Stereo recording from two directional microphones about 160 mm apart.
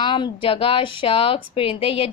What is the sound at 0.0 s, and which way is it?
A woman's voice, 30° left (ahead or behind).